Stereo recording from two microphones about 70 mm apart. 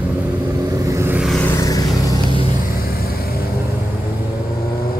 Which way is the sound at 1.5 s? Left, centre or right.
Left.